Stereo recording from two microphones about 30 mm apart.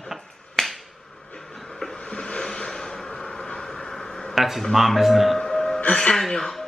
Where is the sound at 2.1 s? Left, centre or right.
Left.